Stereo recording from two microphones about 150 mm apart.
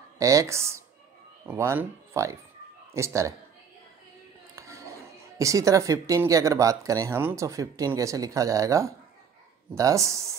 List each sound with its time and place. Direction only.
0.2 s speech: 20° right (ahead or behind)
4.6 s a sound: 20° right (ahead or behind)
5.4 s speech: 20° right (ahead or behind)